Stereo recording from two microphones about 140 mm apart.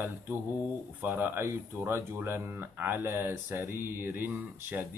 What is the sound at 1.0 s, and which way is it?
Speech, 15° right (ahead or behind).